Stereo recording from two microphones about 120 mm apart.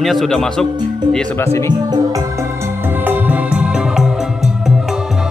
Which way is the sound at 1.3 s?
20° left (ahead or behind).